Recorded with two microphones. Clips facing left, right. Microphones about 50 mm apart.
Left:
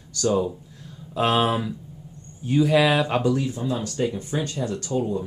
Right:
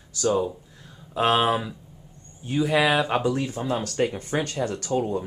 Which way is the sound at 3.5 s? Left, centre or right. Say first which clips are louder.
Right 1 dB; right.